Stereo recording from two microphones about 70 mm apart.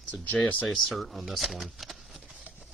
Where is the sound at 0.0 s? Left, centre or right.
Left.